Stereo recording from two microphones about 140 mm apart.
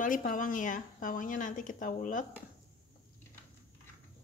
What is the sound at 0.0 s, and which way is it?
Speech, 80° left.